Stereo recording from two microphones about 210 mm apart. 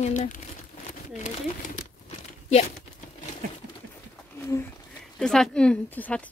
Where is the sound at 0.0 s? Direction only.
35° left (ahead or behind).